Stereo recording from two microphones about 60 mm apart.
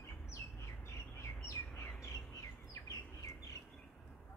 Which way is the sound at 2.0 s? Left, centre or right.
Left.